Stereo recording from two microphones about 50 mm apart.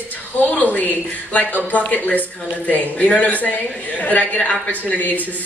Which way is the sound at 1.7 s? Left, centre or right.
Left.